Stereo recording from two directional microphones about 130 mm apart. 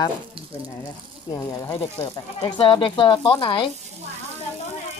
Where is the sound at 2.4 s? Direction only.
40° left (ahead or behind).